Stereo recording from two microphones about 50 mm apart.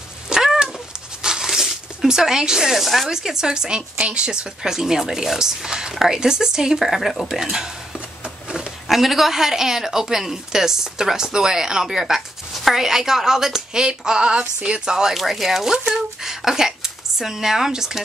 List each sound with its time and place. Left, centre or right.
0.3 s cat: centre
1.2 s speech: centre
8.8 s speech: centre
15.1 s a woman's voice: centre